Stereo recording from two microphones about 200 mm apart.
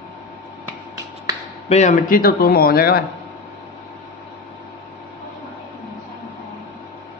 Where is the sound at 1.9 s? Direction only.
45° left (ahead or behind).